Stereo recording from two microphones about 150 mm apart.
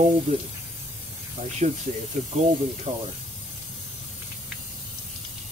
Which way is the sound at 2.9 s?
40° right (ahead or behind).